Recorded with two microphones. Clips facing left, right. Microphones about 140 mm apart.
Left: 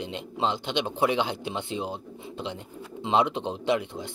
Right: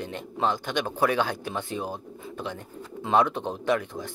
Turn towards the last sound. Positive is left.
turn(degrees=15)  # may be behind; listen again after turning